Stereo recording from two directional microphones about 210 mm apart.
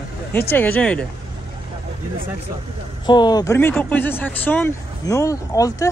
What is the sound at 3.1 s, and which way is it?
Speech, 20° left (ahead or behind).